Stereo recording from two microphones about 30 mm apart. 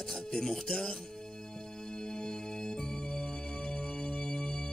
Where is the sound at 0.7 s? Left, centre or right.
Left.